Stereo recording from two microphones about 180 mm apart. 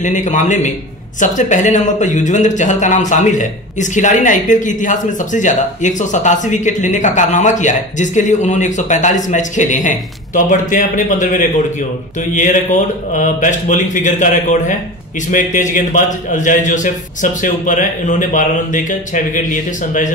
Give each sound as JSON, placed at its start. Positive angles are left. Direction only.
{"t": 0.0, "sound": "speech", "side_deg": 45}